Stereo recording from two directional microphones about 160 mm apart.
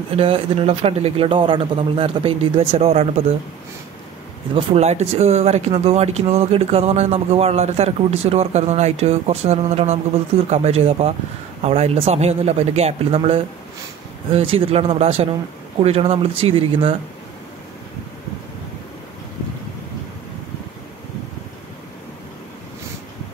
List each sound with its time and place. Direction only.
0.1 s speech: 35° right (ahead or behind)
4.6 s speech: 40° right (ahead or behind)